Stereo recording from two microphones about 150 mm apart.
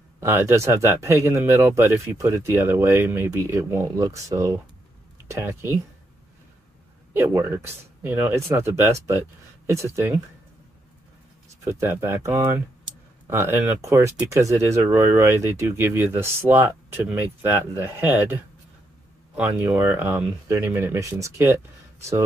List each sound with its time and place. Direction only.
0.2 s speech: 15° right (ahead or behind)
7.2 s speech: 15° right (ahead or behind)
11.6 s speech: 15° right (ahead or behind)